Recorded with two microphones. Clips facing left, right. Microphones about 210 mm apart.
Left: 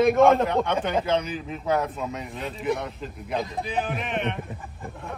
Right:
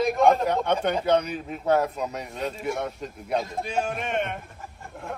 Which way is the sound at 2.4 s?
Centre (ahead or behind).